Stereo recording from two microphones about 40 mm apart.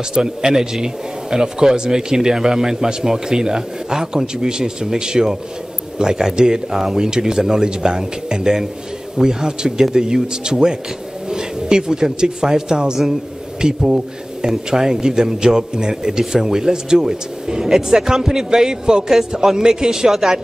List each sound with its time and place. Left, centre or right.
0.1 s a man's voice: centre